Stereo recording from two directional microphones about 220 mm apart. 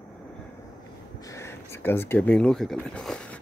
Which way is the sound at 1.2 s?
10° left (ahead or behind).